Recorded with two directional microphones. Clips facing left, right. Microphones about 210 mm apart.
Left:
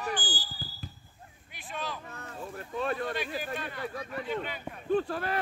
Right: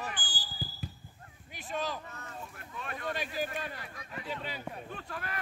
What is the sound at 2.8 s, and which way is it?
Speech, 30° left (ahead or behind).